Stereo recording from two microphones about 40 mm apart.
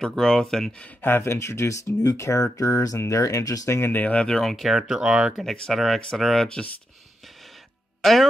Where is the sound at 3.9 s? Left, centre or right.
Left.